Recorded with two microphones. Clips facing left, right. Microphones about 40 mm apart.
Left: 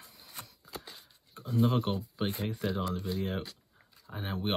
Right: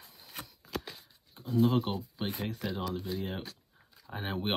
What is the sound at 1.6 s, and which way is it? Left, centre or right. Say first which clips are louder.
Speech: even; centre.